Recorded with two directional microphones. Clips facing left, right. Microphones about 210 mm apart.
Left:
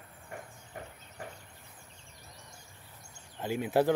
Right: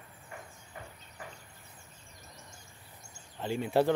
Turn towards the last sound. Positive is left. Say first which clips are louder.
# even
turn(degrees=10)  # may be behind; listen again after turning